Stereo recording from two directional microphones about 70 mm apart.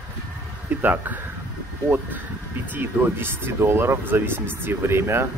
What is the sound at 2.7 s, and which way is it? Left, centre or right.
Speech, right.